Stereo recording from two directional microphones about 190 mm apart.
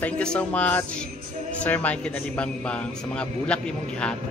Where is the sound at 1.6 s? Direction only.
10° left (ahead or behind).